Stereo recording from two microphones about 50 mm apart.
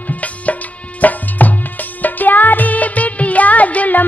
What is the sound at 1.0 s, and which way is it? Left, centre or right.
Music, left.